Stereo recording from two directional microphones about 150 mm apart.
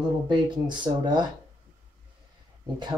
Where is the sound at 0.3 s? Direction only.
30° right (ahead or behind).